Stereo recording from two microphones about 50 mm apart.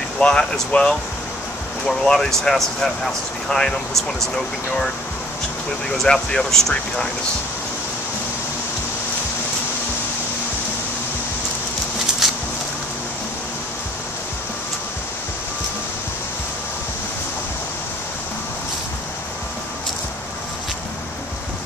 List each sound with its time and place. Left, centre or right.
0.2 s speech: centre
1.9 s speech: centre
6.0 s speech: centre
12.2 s a sound: centre